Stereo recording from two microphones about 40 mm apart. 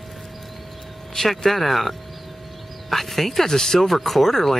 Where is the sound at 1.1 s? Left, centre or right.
Centre.